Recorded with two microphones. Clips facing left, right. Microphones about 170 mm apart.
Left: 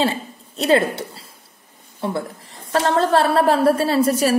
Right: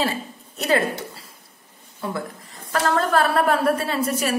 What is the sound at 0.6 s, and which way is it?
A woman's voice, 30° left (ahead or behind).